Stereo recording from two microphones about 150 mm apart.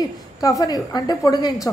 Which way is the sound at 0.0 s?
25° left (ahead or behind).